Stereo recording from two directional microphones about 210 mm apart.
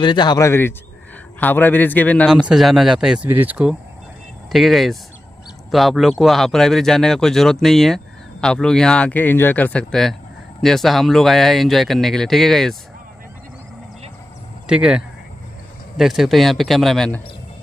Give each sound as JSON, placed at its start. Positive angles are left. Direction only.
{"t": 0.0, "sound": "a man's voice", "side_deg": 20}
{"t": 14.7, "sound": "speech", "side_deg": -5}